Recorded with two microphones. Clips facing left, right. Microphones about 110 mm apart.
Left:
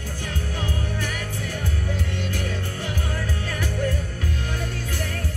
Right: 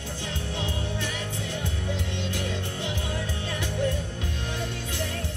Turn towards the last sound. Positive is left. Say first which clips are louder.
# left 2 dB
turn(degrees=45)  # may be behind; listen again after turning